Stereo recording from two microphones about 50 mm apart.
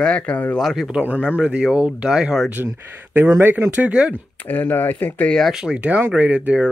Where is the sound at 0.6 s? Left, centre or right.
Centre.